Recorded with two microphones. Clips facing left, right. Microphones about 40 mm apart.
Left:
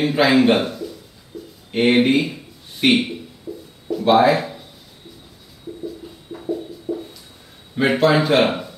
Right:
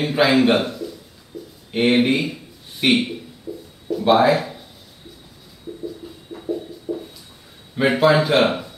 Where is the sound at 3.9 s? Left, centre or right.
Centre.